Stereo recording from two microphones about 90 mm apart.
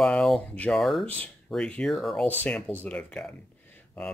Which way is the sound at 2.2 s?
20° left (ahead or behind).